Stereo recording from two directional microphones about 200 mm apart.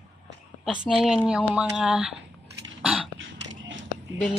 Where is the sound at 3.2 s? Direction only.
70° right (ahead or behind).